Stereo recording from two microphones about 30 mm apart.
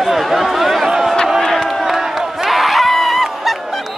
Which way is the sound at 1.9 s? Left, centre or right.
Centre.